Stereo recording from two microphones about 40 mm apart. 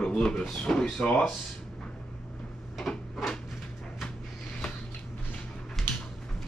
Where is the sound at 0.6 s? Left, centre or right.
Left.